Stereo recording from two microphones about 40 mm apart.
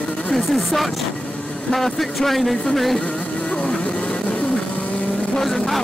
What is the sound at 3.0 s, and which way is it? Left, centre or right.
Music, left.